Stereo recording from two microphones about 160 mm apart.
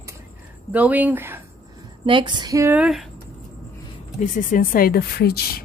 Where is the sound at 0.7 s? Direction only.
10° right (ahead or behind).